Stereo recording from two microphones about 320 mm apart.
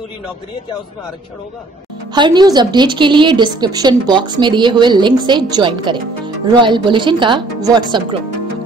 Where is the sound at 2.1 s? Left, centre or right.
Centre.